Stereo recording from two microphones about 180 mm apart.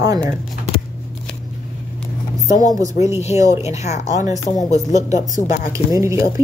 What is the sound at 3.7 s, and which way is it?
Speech, 40° left (ahead or behind).